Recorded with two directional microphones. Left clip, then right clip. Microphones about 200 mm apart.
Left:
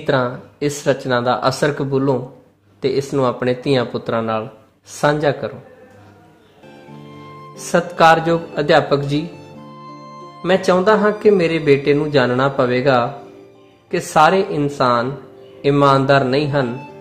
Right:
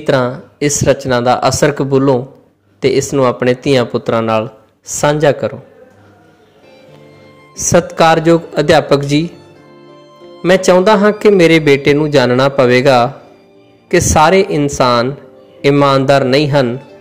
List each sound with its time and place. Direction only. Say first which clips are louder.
0.0 s speech: right 5 dB; 15° right (ahead or behind)
7.6 s speech: right 3 dB; 20° right (ahead or behind)
10.4 s speech: right 6 dB; 20° right (ahead or behind)